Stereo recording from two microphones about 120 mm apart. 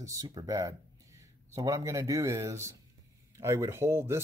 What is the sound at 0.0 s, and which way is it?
Speech, 30° right (ahead or behind).